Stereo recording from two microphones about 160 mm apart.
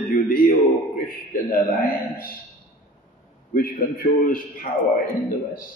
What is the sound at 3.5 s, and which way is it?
A man's voice, 65° left (ahead or behind).